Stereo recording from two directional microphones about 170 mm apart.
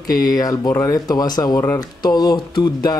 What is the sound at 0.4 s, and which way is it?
Speech, 20° left (ahead or behind).